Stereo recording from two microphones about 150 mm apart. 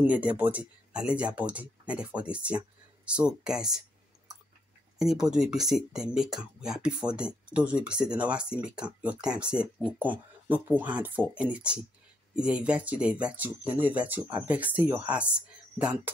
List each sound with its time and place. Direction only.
0.0 s speech: 10° right (ahead or behind)
4.9 s speech: 5° right (ahead or behind)